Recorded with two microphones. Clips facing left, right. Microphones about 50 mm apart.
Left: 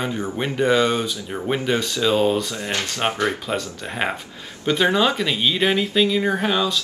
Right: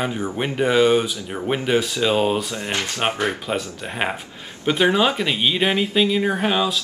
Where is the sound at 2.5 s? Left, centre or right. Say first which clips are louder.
Even; right.